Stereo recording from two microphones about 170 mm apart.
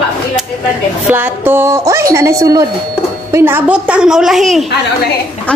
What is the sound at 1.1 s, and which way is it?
A woman's voice, 15° right (ahead or behind).